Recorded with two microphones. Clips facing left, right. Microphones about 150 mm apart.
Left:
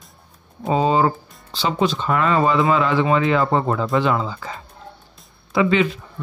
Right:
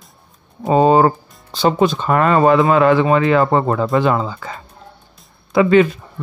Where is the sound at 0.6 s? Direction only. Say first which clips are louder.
Right 6 dB; 50° right (ahead or behind).